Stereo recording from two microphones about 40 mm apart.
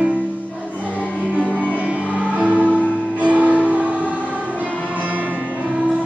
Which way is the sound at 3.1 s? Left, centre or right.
Right.